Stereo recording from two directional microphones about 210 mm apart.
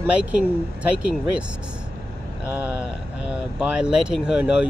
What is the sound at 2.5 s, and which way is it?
Speech, 5° right (ahead or behind).